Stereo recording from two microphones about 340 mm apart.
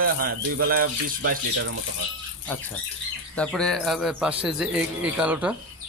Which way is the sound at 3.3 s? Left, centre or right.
Centre.